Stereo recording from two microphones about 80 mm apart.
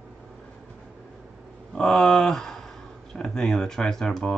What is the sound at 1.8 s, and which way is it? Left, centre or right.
Speech, centre.